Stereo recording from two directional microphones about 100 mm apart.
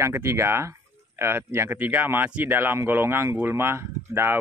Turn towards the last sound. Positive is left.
turn(degrees=-25)  # may be behind; listen again after turning